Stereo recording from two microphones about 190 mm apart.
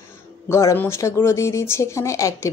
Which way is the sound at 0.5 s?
15° left (ahead or behind).